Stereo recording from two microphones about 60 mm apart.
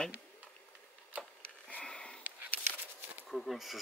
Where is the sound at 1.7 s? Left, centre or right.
Centre.